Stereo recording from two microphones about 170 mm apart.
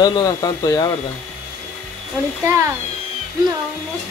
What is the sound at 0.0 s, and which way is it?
Speech, 20° left (ahead or behind).